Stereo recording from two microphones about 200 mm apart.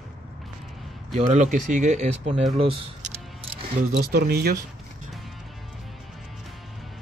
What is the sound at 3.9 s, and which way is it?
Speech, 55° right (ahead or behind).